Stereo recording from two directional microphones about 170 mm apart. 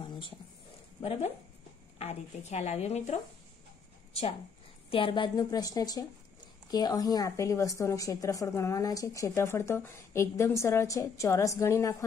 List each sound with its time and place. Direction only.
0.0 s a sound: 30° left (ahead or behind)
2.0 s a woman's voice: 40° left (ahead or behind)
4.9 s speech: 30° left (ahead or behind)